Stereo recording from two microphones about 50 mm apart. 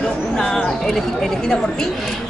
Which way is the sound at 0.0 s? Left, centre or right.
Centre.